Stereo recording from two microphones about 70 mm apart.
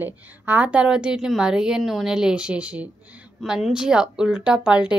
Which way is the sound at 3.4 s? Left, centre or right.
Centre.